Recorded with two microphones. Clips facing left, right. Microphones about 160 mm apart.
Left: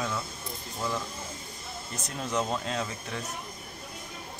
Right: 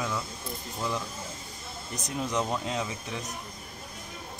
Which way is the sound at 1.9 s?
15° right (ahead or behind).